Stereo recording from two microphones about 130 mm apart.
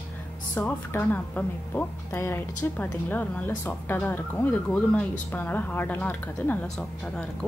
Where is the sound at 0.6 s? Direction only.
15° left (ahead or behind).